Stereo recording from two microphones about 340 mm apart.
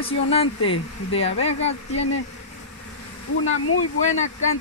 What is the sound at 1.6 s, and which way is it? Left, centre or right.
Speech, centre.